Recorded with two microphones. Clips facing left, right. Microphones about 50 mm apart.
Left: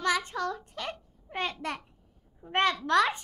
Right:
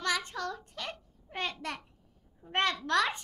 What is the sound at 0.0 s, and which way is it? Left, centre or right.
Babbling, centre.